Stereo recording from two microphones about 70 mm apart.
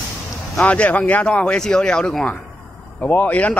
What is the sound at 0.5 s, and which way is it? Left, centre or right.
Speech, centre.